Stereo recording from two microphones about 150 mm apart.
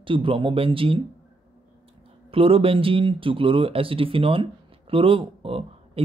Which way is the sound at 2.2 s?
40° right (ahead or behind).